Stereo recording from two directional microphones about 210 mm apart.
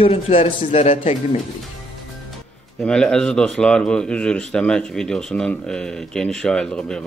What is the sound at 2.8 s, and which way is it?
Speech, 5° left (ahead or behind).